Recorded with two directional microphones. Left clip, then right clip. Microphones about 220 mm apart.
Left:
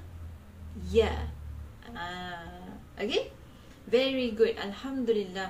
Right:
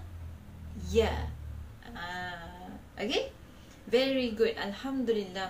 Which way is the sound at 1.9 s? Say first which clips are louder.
Even; 20° left (ahead or behind).